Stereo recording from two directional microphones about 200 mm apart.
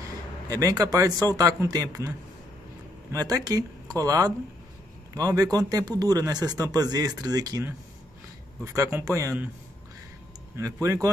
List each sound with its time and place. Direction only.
0.5 s speech: 15° right (ahead or behind)
10.5 s speech: 15° right (ahead or behind)